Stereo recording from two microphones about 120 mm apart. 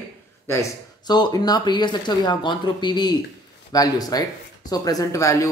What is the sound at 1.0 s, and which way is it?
Speech, 35° left (ahead or behind).